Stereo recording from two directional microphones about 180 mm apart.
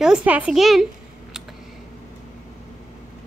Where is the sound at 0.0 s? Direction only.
5° right (ahead or behind).